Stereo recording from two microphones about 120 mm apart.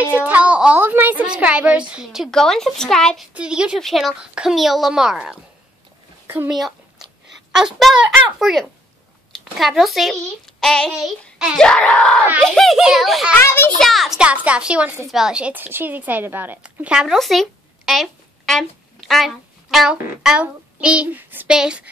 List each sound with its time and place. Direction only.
0.0 s a sound: 15° right (ahead or behind)
1.2 s a child's voice: 10° right (ahead or behind)
2.3 s a woman's voice: 5° left (ahead or behind)
3.3 s a woman's voice: 10° right (ahead or behind)
6.2 s speech: 15° right (ahead or behind)
7.5 s a woman's voice: 5° right (ahead or behind)
13.4 s a child's voice: 20° left (ahead or behind)
13.7 s a child's voice: centre (ahead or behind)